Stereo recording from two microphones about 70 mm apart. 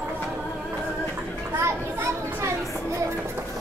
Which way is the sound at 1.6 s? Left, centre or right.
Right.